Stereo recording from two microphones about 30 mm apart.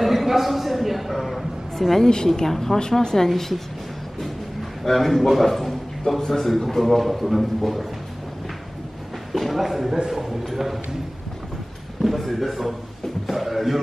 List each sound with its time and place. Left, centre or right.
0.0 s a sound: centre
2.3 s speech: centre
3.0 s a woman's voice: left
3.3 s speech: centre
4.8 s speech: centre
5.3 s a sound: centre
6.1 s a man's voice: centre
9.3 s a man's voice: centre
12.0 s a man's voice: centre